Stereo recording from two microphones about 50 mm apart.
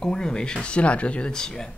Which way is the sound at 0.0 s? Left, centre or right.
Centre.